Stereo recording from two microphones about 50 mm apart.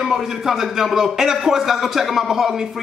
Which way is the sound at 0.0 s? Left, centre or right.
Centre.